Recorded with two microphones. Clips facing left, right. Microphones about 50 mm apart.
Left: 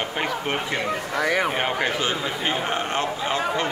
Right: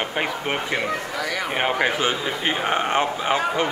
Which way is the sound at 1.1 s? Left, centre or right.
Left.